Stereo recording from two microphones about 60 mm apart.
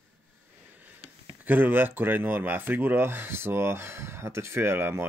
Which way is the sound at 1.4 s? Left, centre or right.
Right.